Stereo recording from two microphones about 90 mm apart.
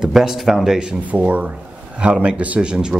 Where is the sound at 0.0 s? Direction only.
5° right (ahead or behind).